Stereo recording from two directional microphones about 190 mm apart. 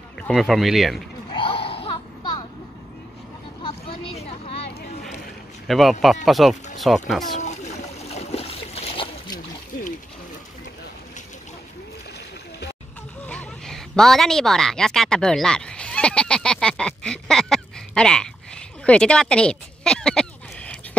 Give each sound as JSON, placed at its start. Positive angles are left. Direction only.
{"t": 0.3, "sound": "speech", "side_deg": 0}
{"t": 1.3, "sound": "a sound", "side_deg": 30}
{"t": 3.6, "sound": "vehicle", "side_deg": 30}
{"t": 5.7, "sound": "speech", "side_deg": 0}
{"t": 7.3, "sound": "splash", "side_deg": 35}
{"t": 13.2, "sound": "a sound", "side_deg": 5}